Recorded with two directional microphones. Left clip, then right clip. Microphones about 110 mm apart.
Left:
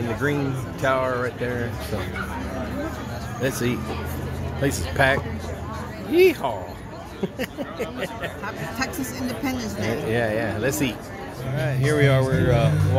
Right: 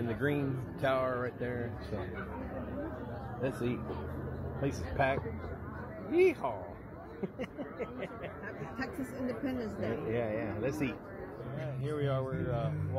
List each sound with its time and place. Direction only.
0.2 s speech: 15° right (ahead or behind)
4.6 s speech: 30° left (ahead or behind)
10.1 s speech: 25° left (ahead or behind)